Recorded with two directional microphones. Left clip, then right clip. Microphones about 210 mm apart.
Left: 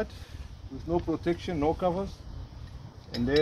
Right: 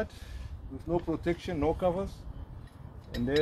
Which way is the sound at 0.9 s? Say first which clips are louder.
Left 2 dB; 5° right (ahead or behind).